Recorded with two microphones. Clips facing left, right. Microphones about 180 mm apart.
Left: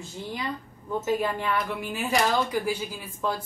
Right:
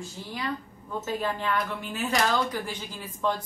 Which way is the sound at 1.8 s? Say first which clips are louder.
Left 3 dB; 10° left (ahead or behind).